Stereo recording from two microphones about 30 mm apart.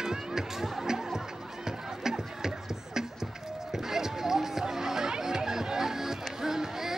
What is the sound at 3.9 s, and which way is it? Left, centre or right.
Music, centre.